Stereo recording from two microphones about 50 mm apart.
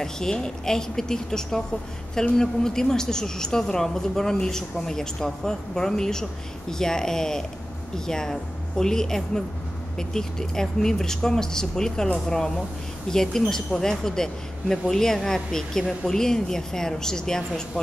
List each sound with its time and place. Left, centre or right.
0.0 s a woman's voice: centre
13.1 s a woman's voice: centre